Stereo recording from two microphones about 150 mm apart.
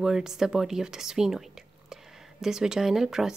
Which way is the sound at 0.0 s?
5° right (ahead or behind).